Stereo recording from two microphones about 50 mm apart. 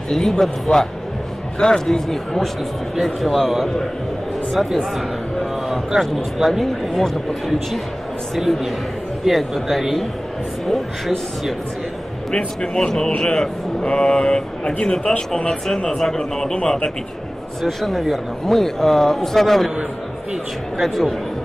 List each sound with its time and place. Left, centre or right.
0.1 s speech: centre
4.9 s music: centre
5.9 s speech: centre
12.4 s speech: centre
17.6 s speech: centre
20.8 s speech: centre